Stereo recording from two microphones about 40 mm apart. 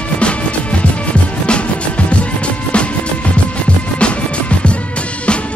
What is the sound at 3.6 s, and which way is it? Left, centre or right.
Music, left.